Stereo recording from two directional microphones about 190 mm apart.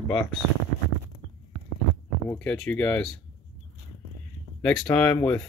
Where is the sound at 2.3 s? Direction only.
5° left (ahead or behind).